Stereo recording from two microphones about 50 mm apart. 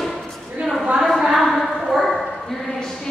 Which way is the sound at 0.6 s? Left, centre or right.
Centre.